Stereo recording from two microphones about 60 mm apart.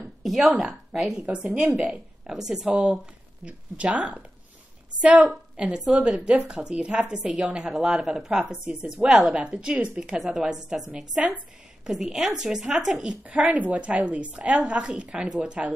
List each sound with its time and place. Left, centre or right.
0.2 s a woman's voice: centre
1.1 s a woman's voice: centre
2.2 s a woman's voice: centre
13.2 s a woman's voice: right